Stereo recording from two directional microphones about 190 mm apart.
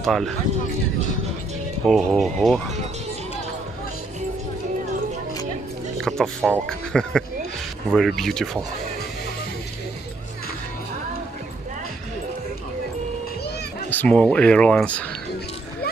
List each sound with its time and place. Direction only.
0.0 s speech: centre (ahead or behind)
1.9 s speech: centre (ahead or behind)
6.0 s speech: centre (ahead or behind)
13.8 s speech: 5° left (ahead or behind)